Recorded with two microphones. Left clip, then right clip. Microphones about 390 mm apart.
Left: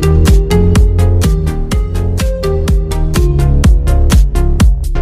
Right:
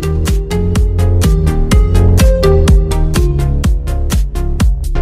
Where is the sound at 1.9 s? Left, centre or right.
Right.